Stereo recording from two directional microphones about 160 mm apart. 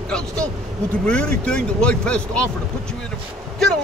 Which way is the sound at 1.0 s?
5° left (ahead or behind).